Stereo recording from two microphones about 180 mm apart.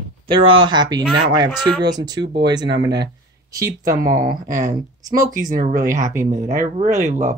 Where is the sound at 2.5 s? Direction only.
25° right (ahead or behind).